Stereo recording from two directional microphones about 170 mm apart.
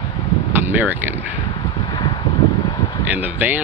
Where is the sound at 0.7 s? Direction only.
10° right (ahead or behind).